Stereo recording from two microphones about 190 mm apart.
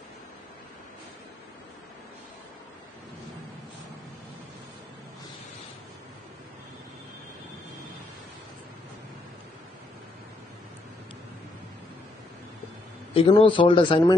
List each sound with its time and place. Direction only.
13.1 s speech: 25° left (ahead or behind)